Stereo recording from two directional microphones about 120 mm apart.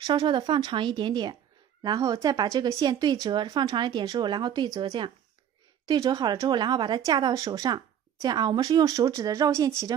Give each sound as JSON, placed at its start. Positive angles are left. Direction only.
{"t": 0.0, "sound": "a woman's voice", "side_deg": -35}